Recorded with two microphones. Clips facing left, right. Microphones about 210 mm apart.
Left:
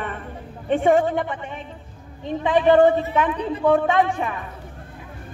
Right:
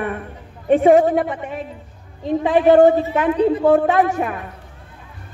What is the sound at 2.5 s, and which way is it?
A man's voice, 10° right (ahead or behind).